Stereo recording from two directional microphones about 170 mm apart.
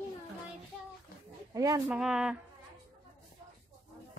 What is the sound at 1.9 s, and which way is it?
Speech, 5° right (ahead or behind).